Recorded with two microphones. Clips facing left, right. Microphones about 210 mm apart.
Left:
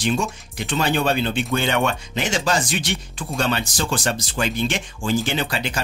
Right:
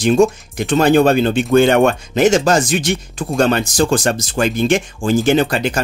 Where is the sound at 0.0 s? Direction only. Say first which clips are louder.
Right 11 dB; 45° right (ahead or behind).